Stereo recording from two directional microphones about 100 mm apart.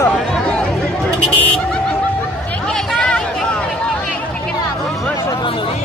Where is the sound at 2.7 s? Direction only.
10° left (ahead or behind).